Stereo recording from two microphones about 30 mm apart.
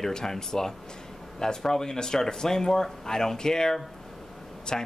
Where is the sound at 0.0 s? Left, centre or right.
Centre.